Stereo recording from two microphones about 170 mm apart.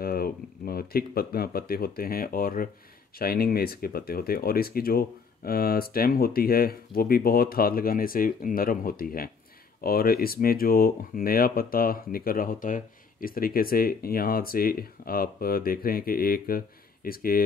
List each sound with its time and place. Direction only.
0.0 s speech: 60° left (ahead or behind)